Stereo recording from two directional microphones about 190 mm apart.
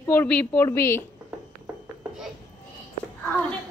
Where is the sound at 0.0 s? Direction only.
10° left (ahead or behind).